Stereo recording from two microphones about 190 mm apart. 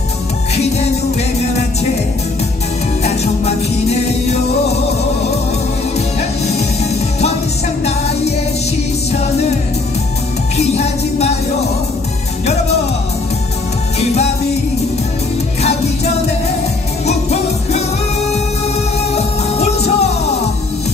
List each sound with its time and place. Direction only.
3.0 s music: 35° left (ahead or behind)
5.9 s music: 35° left (ahead or behind)
10.6 s music: 35° left (ahead or behind)
17.0 s music: 35° left (ahead or behind)
19.1 s music: 35° left (ahead or behind)